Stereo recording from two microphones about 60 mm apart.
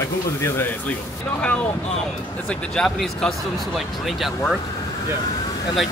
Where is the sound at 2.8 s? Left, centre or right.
Centre.